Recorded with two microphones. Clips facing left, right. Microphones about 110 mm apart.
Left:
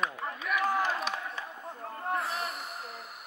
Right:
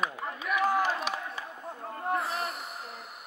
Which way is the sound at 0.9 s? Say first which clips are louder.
Right 1 dB; 5° right (ahead or behind).